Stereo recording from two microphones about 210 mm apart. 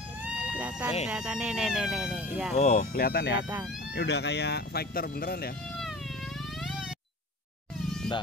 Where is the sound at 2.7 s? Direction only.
45° left (ahead or behind).